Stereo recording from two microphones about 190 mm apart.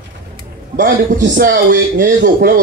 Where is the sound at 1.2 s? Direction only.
60° right (ahead or behind).